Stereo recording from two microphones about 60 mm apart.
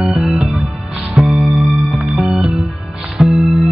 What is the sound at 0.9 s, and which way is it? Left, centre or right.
Music, centre.